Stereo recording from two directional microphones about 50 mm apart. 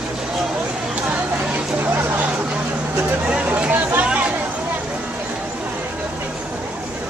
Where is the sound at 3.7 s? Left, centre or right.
Right.